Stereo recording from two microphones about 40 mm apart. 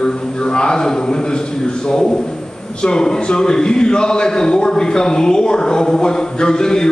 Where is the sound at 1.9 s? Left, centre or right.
Centre.